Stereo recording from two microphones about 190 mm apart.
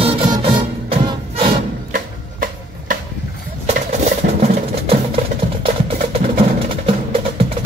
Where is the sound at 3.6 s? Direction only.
35° right (ahead or behind).